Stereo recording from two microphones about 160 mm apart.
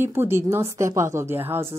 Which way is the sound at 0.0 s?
15° right (ahead or behind).